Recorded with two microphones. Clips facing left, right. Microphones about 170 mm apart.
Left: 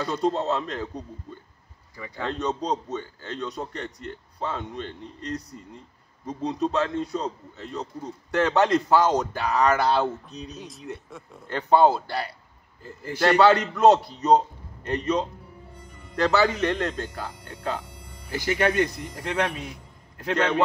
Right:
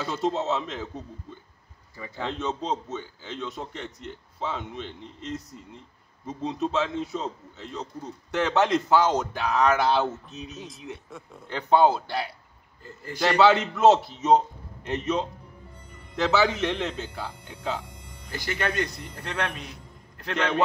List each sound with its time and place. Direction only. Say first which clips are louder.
0.0 s a man's voice: left 2 dB; 5° right (ahead or behind)
2.0 s a man's voice: even; 25° right (ahead or behind)
2.2 s a man's voice: left 2 dB; centre (ahead or behind)
18.5 s a man's voice: left 6 dB; 15° left (ahead or behind)